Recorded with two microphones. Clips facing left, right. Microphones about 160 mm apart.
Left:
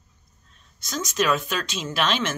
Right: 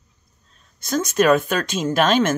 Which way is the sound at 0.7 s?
55° right (ahead or behind).